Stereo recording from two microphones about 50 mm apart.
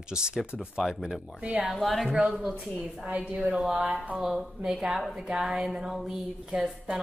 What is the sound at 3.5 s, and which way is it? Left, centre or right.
Speech, right.